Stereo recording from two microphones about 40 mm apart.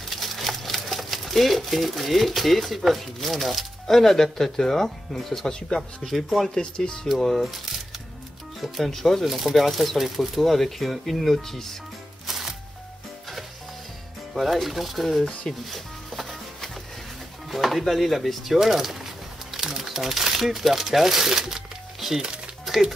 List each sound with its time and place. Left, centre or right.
0.1 s speech: centre
5.5 s speech: left
6.0 s speech: centre
6.5 s speech: centre
7.1 s speech: centre
8.9 s speech: centre
9.2 s speech: centre
12.3 s music: centre
14.3 s speech: centre
19.5 s crumpling: centre